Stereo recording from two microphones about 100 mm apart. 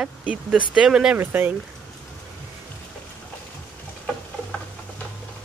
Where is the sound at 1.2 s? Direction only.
20° right (ahead or behind).